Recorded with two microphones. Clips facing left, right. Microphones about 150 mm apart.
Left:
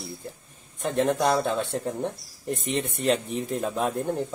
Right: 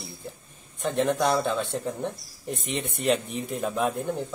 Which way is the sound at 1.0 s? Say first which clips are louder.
Left 1 dB; centre (ahead or behind).